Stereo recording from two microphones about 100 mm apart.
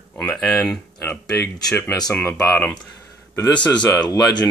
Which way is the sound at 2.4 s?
20° left (ahead or behind).